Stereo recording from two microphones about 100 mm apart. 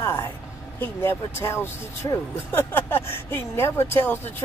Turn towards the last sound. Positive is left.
turn(degrees=20)  # may be behind; listen again after turning